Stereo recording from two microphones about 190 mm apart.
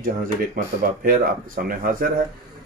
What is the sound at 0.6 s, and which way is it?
Speech, 45° right (ahead or behind).